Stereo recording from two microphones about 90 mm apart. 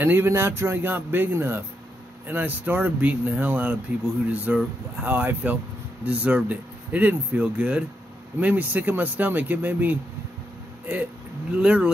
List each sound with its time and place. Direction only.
0.0 s speech: 25° right (ahead or behind)
11.5 s speech: 10° right (ahead or behind)